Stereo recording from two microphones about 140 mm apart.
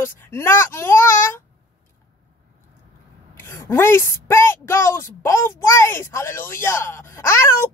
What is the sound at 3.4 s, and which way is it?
A woman's voice, 20° left (ahead or behind).